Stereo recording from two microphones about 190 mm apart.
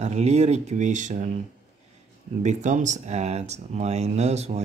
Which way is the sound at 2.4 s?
40° right (ahead or behind).